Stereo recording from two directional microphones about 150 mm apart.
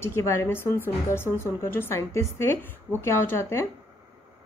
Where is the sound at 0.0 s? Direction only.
15° left (ahead or behind).